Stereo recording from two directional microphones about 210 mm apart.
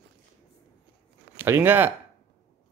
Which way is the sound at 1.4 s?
10° right (ahead or behind).